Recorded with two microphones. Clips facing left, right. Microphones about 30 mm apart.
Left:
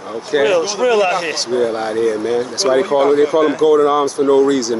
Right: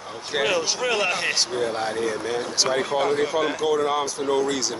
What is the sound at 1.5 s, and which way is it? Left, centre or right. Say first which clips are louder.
Speech: left 8 dB; centre.